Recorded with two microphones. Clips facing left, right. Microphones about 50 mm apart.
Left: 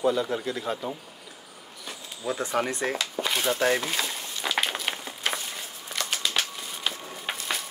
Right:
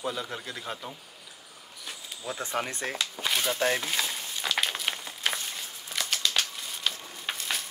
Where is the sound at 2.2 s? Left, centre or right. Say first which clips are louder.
Left 6 dB; centre.